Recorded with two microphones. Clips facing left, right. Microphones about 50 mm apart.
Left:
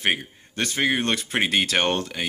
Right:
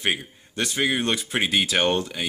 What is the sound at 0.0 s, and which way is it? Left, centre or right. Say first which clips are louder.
Speech: left 1 dB; left.